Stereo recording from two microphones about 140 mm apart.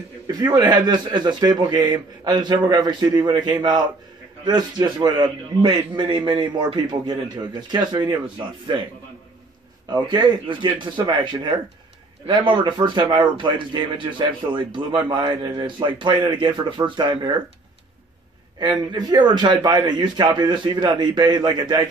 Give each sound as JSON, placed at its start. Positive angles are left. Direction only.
{"t": 0.3, "sound": "a man's voice", "side_deg": -30}
{"t": 9.8, "sound": "speech", "side_deg": -30}
{"t": 18.6, "sound": "speech", "side_deg": -30}